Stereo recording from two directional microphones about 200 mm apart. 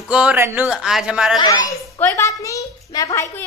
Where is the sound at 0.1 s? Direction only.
5° right (ahead or behind).